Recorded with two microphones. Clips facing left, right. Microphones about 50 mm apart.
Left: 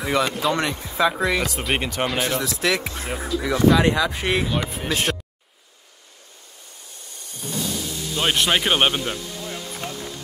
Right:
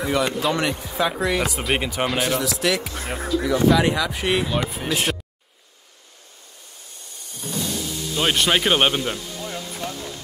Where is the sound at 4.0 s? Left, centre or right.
Left.